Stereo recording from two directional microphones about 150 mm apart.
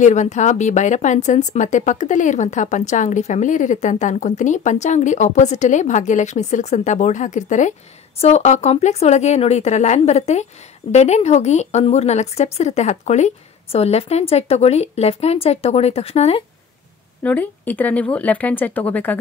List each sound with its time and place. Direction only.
0.0 s speech: 50° left (ahead or behind)
17.2 s speech: 10° left (ahead or behind)